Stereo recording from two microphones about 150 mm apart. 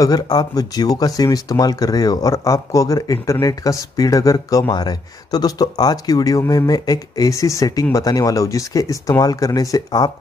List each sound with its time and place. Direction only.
0.0 s speech: 25° left (ahead or behind)